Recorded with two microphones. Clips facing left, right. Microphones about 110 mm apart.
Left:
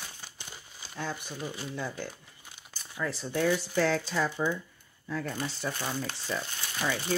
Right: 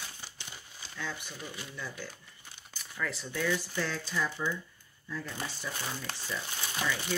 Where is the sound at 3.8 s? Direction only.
65° left (ahead or behind).